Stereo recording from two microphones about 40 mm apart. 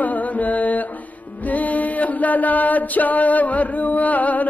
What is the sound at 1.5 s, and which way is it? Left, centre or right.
Chant, left.